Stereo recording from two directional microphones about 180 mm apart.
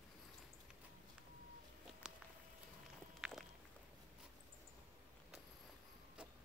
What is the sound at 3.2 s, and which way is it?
Walk, centre (ahead or behind).